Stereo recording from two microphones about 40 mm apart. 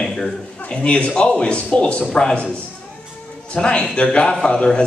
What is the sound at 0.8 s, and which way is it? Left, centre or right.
A man's voice, left.